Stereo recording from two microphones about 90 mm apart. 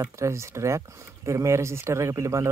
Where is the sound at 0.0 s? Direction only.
35° right (ahead or behind).